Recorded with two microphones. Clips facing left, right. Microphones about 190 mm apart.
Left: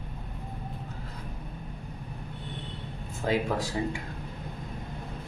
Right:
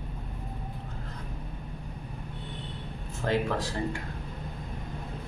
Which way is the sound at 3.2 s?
10° left (ahead or behind).